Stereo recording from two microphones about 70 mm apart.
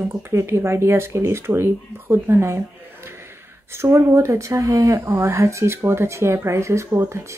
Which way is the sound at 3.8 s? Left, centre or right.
Right.